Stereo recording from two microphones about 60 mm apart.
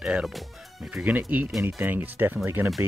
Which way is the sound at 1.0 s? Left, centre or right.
Right.